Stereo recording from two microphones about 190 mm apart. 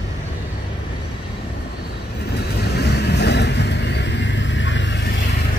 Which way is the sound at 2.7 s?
60° left (ahead or behind).